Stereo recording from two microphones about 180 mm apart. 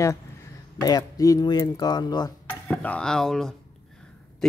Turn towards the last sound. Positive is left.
turn(degrees=5)  # may be behind; listen again after turning